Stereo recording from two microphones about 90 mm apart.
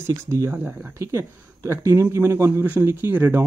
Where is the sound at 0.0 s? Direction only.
30° right (ahead or behind).